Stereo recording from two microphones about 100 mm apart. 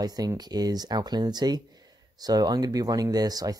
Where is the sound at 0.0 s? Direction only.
40° right (ahead or behind).